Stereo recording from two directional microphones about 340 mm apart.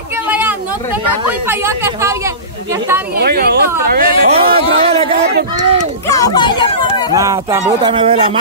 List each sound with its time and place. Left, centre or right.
0.3 s a sound: centre
1.5 s speech: centre
3.2 s speech: right
6.0 s speech: centre
7.2 s speech: centre